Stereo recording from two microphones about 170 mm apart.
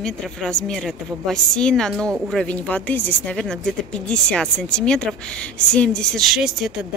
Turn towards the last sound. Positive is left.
turn(degrees=0)  # may be behind; listen again after turning